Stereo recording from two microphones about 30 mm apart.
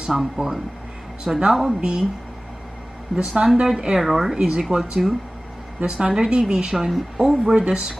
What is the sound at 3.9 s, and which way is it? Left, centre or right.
Speech, centre.